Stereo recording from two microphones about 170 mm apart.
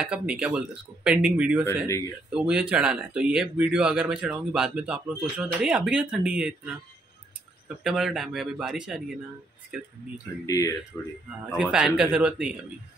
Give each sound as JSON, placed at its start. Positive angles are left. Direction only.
{"t": 0.0, "sound": "speech", "side_deg": -5}
{"t": 1.9, "sound": "speech", "side_deg": 15}
{"t": 2.3, "sound": "speech", "side_deg": -5}
{"t": 7.8, "sound": "speech", "side_deg": -5}
{"t": 10.4, "sound": "speech", "side_deg": 20}
{"t": 11.5, "sound": "speech", "side_deg": -5}